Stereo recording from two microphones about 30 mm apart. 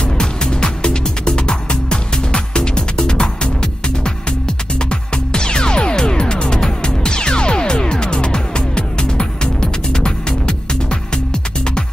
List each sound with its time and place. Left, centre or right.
0.0 s music: left
4.7 s music: left